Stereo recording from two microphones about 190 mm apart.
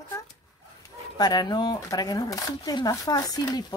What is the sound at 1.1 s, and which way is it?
Speech, 20° left (ahead or behind).